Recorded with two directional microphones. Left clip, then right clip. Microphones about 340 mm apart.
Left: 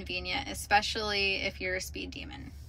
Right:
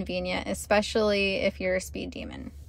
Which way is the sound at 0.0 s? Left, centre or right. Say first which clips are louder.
Right 4 dB; centre.